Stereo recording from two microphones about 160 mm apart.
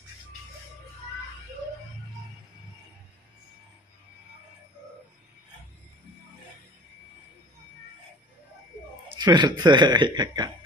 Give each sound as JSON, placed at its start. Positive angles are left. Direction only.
{"t": 9.2, "sound": "speech", "side_deg": -25}